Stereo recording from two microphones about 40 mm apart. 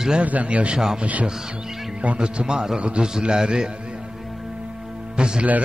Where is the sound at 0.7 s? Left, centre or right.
Centre.